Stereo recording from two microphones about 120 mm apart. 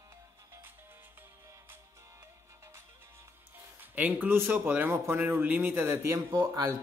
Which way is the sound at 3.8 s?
15° right (ahead or behind).